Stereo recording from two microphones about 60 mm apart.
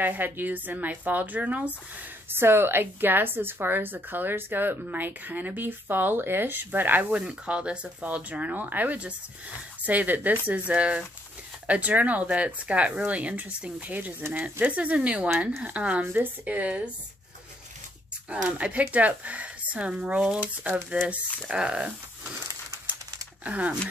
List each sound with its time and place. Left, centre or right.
0.0 s speech: right
2.2 s a woman's voice: right
7.2 s speech: centre
16.0 s speech: right
18.3 s speech: right
23.4 s speech: right